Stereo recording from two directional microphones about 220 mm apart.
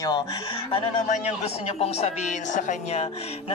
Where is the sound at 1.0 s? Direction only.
35° left (ahead or behind).